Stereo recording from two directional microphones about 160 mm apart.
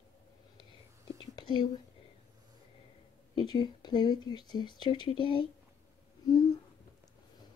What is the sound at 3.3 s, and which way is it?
Speech, 30° left (ahead or behind).